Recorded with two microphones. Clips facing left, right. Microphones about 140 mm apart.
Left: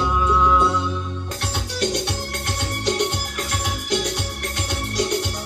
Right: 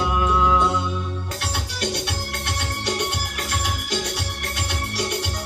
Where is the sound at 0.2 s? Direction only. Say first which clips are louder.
Left 1 dB; 15° right (ahead or behind).